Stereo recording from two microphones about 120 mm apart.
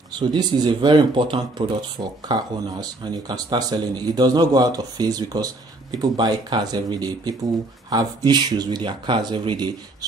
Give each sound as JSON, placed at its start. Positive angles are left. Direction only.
{"t": 0.2, "sound": "speech", "side_deg": -35}